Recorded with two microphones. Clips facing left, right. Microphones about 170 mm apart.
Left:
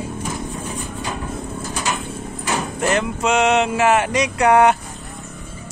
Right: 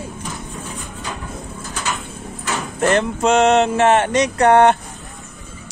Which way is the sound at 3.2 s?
30° right (ahead or behind).